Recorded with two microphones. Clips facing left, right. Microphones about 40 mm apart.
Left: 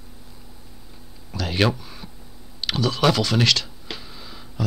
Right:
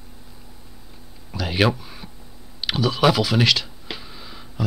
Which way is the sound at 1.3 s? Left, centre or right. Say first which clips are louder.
Right 1 dB; centre.